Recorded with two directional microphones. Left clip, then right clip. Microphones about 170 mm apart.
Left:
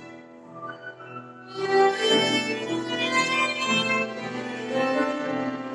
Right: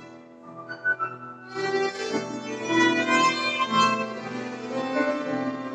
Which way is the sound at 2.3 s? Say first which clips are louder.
Left 1 dB; 15° left (ahead or behind).